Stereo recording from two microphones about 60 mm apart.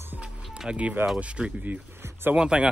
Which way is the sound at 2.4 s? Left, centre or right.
Centre.